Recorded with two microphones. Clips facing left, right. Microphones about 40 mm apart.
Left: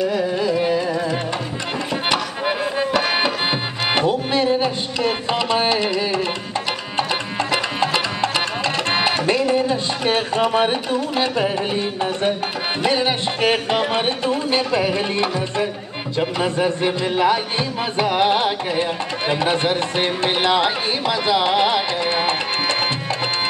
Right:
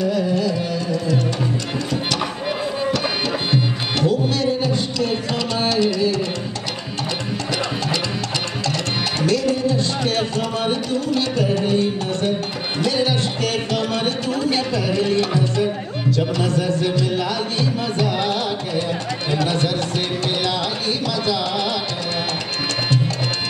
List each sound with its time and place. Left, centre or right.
0.1 s carnatic music: left
2.0 s music: left
7.8 s music: left